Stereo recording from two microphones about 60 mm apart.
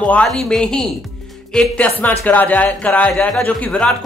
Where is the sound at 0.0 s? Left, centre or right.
Left.